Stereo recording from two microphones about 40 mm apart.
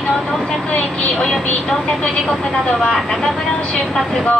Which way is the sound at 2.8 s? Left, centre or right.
Centre.